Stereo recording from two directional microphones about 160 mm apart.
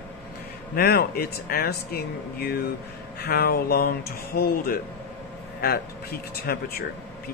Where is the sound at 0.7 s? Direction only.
70° left (ahead or behind).